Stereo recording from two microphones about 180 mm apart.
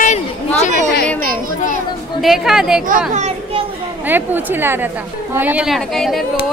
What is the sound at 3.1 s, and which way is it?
Speech, 40° right (ahead or behind).